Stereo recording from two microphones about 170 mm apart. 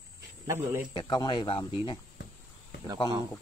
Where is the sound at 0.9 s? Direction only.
25° left (ahead or behind).